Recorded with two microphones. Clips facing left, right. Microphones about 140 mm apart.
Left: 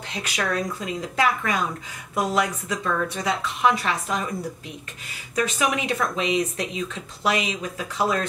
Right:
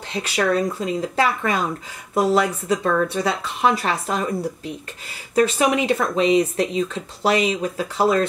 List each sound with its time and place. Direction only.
0.1 s speech: 30° right (ahead or behind)
5.3 s speech: 35° right (ahead or behind)